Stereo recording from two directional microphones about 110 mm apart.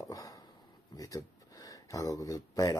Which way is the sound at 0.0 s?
30° left (ahead or behind).